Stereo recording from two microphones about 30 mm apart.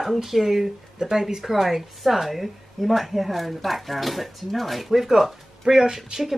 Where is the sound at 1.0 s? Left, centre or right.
Centre.